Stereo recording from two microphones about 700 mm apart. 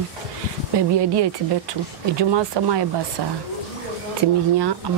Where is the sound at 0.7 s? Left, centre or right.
Right.